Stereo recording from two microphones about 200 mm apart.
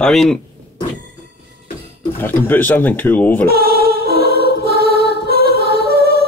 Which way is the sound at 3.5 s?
50° right (ahead or behind).